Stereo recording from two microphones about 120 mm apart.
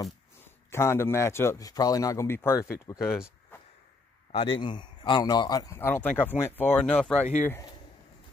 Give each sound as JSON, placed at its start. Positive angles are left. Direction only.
{"t": 0.7, "sound": "speech", "side_deg": 20}
{"t": 4.3, "sound": "a man's voice", "side_deg": 50}
{"t": 5.8, "sound": "speech", "side_deg": 15}